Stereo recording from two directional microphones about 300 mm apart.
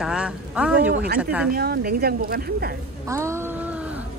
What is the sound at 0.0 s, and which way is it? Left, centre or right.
Speech, centre.